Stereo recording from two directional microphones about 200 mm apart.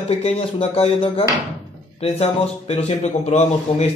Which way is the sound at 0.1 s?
30° left (ahead or behind).